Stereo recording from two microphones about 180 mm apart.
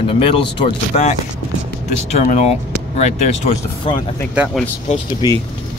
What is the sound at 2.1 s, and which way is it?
Speech, 40° left (ahead or behind).